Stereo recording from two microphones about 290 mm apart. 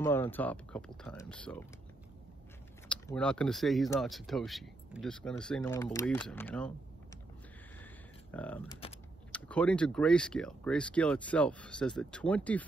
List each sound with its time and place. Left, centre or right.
0.0 s speech: centre
2.9 s speech: centre
7.8 s a sound: centre
9.3 s speech: centre